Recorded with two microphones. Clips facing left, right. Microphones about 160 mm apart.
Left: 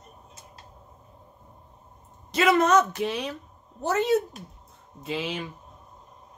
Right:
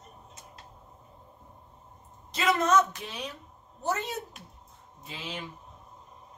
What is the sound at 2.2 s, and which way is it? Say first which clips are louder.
Speech: left 5 dB; 65° left (ahead or behind).